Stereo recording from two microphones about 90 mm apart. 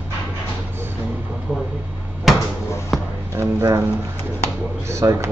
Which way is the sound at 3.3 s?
35° right (ahead or behind).